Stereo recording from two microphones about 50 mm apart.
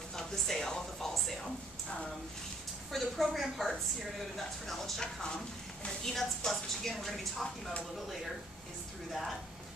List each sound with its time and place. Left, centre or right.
0.1 s speech: centre
2.9 s a woman's voice: centre
6.0 s a woman's voice: centre